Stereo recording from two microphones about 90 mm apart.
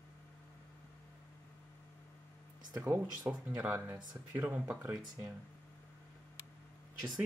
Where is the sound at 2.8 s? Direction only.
20° right (ahead or behind).